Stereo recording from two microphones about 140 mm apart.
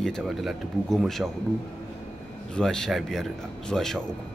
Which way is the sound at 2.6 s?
5° left (ahead or behind).